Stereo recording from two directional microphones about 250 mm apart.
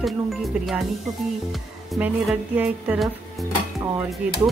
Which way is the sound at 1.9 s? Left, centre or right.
Centre.